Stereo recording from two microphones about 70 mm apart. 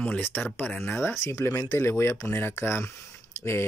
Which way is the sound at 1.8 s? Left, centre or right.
Left.